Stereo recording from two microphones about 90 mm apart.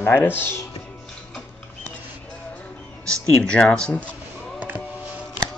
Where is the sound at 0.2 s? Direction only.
25° left (ahead or behind).